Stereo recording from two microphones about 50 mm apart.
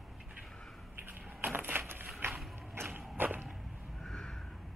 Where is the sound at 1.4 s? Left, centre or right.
Right.